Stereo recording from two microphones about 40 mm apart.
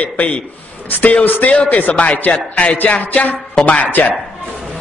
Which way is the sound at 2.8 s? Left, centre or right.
Left.